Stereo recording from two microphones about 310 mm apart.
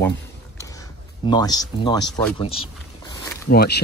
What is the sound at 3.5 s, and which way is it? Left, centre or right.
Speech, left.